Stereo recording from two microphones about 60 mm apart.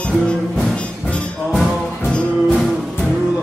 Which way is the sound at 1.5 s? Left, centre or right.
Centre.